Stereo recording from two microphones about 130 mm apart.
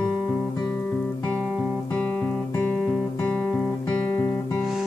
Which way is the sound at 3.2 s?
10° left (ahead or behind).